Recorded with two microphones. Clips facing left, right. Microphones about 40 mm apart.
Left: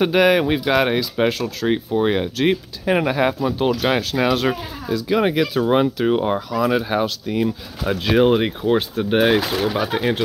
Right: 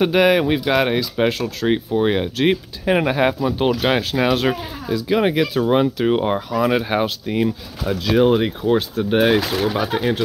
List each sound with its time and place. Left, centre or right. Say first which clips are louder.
0.0 s speech: even; centre
6.0 s speech: even; centre
7.8 s speech: even; left; by 9.8 s centre
9.9 s speech: even; left